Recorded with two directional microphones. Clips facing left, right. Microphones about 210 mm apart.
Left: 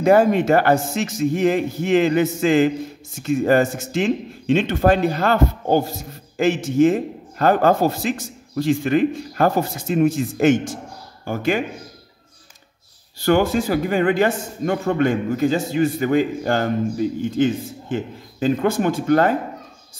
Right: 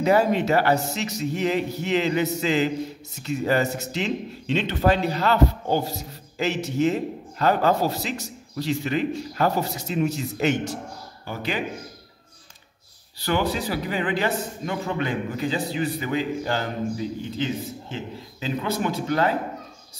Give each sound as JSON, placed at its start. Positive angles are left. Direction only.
{"t": 0.0, "sound": "a man's voice", "side_deg": 50}
{"t": 13.2, "sound": "a man's voice", "side_deg": 45}